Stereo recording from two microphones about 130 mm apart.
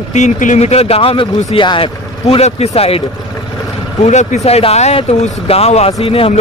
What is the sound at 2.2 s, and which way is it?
Speech, 55° left (ahead or behind).